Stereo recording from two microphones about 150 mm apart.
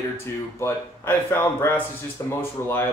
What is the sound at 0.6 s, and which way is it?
Speech, 15° left (ahead or behind).